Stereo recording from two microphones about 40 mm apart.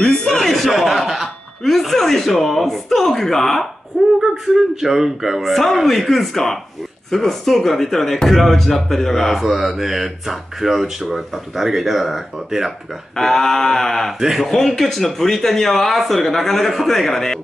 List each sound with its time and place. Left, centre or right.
0.0 s a sound: centre
0.4 s chuckle: centre
1.6 s speech: centre
2.7 s a sound: centre
4.2 s speech: centre
5.4 s speech: centre
9.4 s speech: centre
13.1 s a sound: centre
14.2 s speech: centre
14.8 s speech: centre